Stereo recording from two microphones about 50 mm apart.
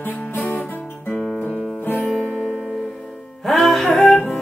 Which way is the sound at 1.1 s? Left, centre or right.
Centre.